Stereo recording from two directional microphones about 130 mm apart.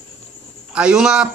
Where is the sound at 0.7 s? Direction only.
5° right (ahead or behind).